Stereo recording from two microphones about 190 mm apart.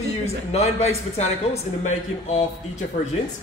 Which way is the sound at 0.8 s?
35° left (ahead or behind).